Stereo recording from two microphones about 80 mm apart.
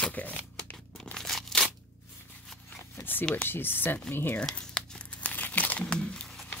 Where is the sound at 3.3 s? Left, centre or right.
Left.